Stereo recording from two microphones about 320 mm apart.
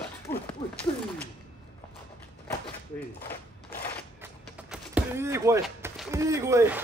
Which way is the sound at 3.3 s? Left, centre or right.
Left.